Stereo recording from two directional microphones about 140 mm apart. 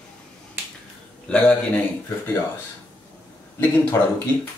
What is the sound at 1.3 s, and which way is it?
Speech, 10° left (ahead or behind).